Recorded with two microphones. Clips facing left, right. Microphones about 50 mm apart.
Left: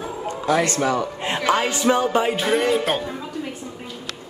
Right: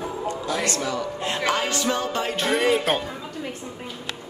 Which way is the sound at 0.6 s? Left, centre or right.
Left.